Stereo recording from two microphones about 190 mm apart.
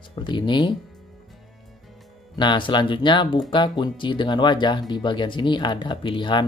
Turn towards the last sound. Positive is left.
turn(degrees=25)  # may be behind; listen again after turning